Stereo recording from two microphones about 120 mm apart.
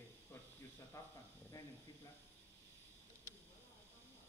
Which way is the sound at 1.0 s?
25° left (ahead or behind).